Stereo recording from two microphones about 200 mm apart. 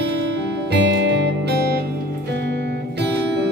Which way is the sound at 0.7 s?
65° right (ahead or behind).